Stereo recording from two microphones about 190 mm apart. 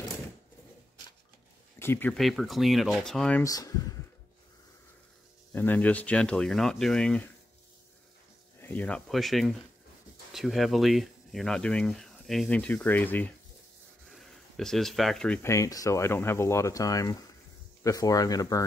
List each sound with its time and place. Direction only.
1.8 s speech: 10° left (ahead or behind)
3.4 s speech: 20° left (ahead or behind)
5.5 s speech: 10° left (ahead or behind)
8.5 s speech: 10° left (ahead or behind)